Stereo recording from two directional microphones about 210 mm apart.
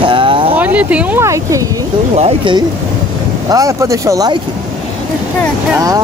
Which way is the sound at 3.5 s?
15° right (ahead or behind).